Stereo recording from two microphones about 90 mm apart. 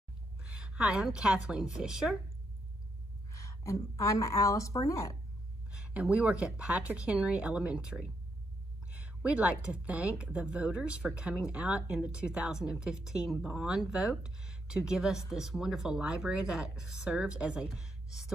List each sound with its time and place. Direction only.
0.4 s a woman's voice: 10° right (ahead or behind)
3.3 s a woman's voice: 35° left (ahead or behind)
5.7 s a sound: 10° right (ahead or behind)
6.4 s a woman's voice: 10° right (ahead or behind)